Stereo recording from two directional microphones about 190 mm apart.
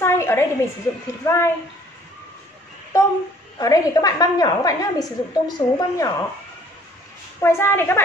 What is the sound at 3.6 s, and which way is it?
A woman's voice, 20° left (ahead or behind).